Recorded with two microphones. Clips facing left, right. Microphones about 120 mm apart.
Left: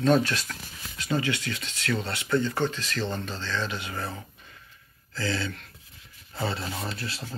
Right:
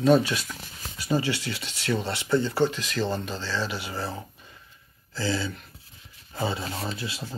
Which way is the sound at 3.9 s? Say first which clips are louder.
Right 2 dB; 30° right (ahead or behind).